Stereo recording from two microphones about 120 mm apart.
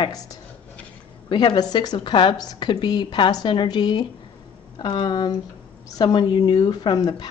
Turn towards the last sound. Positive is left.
turn(degrees=35)  # may be behind; listen again after turning